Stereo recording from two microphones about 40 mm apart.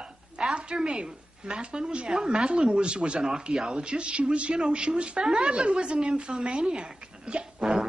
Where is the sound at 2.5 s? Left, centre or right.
Right.